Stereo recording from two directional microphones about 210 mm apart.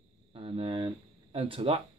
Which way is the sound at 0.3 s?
25° right (ahead or behind).